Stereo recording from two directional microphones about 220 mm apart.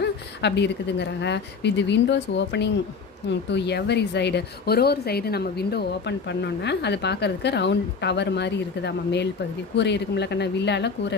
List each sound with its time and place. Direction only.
0.0 s speech: 50° left (ahead or behind)